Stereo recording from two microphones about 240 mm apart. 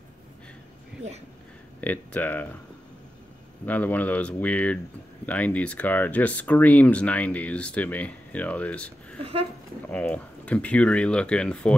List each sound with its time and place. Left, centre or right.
1.8 s speech: centre
3.6 s speech: centre
9.2 s a sound: right
9.8 s speech: centre